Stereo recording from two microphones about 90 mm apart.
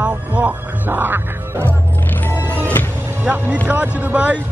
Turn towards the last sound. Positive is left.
turn(degrees=-15)  # may be behind; listen again after turning